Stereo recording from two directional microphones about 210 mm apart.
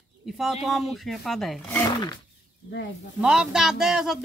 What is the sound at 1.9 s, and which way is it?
Wild animals, 20° left (ahead or behind).